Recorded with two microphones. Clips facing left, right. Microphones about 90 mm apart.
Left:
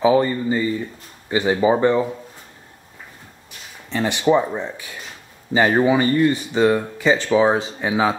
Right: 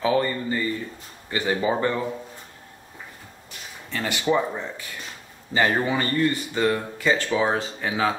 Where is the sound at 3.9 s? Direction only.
20° left (ahead or behind).